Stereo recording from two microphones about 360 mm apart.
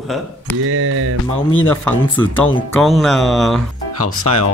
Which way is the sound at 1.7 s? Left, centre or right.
Centre.